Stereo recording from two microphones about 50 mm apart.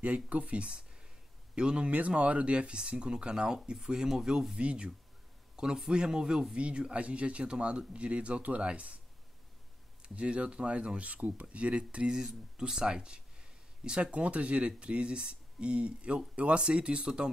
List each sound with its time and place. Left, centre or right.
0.0 s speech: right
1.9 s speech: right; by 4.6 s centre
4.6 s speech: right
10.0 s speech: right